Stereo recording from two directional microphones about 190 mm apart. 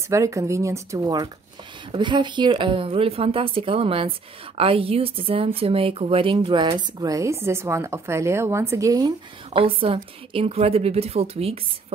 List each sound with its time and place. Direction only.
0.1 s a woman's voice: 15° right (ahead or behind); by 11.6 s 30° right (ahead or behind)